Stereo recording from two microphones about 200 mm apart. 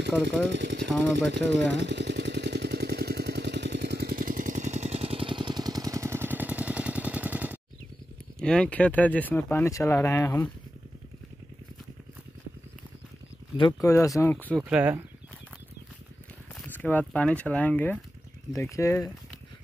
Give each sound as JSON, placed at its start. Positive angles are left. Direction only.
{"t": 0.2, "sound": "speech", "side_deg": -60}
{"t": 1.3, "sound": "jackhammer", "side_deg": -60}
{"t": 8.4, "sound": "speech", "side_deg": 5}
{"t": 13.6, "sound": "speech", "side_deg": 20}
{"t": 14.6, "sound": "speech", "side_deg": -10}
{"t": 16.6, "sound": "speech", "side_deg": 10}